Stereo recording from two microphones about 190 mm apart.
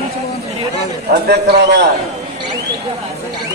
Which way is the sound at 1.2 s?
60° right (ahead or behind).